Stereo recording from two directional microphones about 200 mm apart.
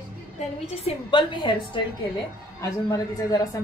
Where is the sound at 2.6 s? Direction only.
15° left (ahead or behind).